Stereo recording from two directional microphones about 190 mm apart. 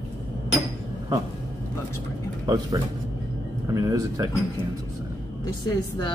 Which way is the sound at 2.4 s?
20° right (ahead or behind).